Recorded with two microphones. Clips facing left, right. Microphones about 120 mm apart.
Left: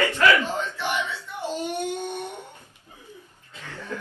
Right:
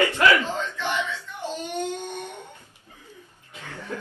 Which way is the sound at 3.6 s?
15° right (ahead or behind).